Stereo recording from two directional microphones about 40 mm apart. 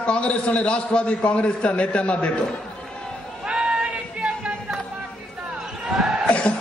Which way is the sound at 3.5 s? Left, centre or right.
Right.